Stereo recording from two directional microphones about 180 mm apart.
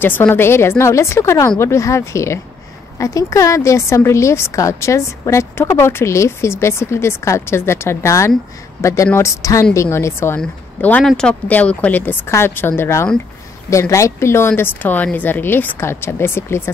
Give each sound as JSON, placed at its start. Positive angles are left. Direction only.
{"t": 0.0, "sound": "a woman's voice", "side_deg": 10}